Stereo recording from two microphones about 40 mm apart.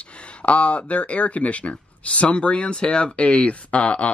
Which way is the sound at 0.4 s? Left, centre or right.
Left.